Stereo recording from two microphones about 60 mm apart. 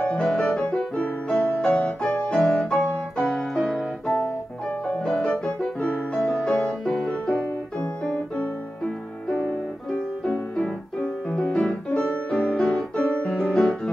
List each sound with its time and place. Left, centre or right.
0.1 s music: centre
2.2 s piano: centre
4.8 s music: centre
8.0 s piano: centre
9.3 s music: centre
11.0 s music: centre